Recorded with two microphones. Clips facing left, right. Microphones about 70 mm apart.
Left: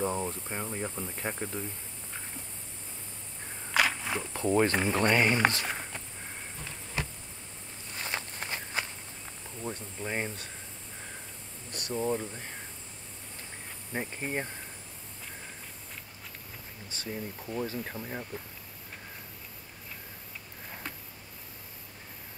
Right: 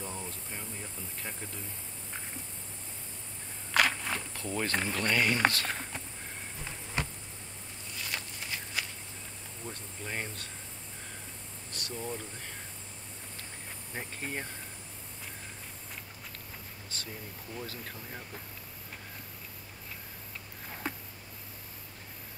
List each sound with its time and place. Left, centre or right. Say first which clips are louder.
0.0 s speech: left 10 dB; left
3.7 s walk: even; centre
4.3 s speech: left 11 dB; left
5.7 s a sound: left 1 dB; centre
7.9 s walk: left 3 dB; left
9.6 s speech: left 6 dB; centre
11.7 s speech: left 8 dB; left
13.9 s speech: left 5 dB; left
17.0 s speech: left 9 dB; centre